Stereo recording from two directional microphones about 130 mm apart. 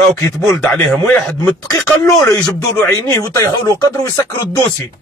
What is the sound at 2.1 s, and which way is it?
Speech, 25° left (ahead or behind).